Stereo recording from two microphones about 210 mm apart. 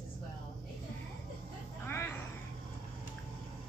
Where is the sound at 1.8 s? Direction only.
10° left (ahead or behind).